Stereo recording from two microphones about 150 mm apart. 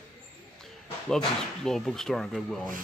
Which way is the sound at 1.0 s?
5° left (ahead or behind).